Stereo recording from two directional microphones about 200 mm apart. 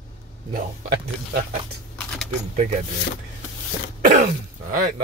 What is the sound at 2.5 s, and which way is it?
Speech, 35° right (ahead or behind).